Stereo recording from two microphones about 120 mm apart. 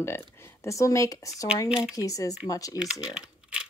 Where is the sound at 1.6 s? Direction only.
5° right (ahead or behind).